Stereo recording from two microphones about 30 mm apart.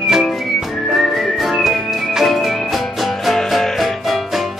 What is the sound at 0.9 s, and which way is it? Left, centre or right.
Whistling, centre.